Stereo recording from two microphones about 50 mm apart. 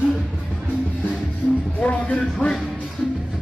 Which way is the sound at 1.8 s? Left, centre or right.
Left.